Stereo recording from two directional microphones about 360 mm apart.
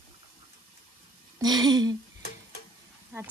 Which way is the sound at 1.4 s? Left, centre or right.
Centre.